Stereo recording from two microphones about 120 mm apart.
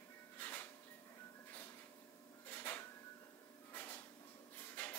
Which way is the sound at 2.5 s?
15° left (ahead or behind).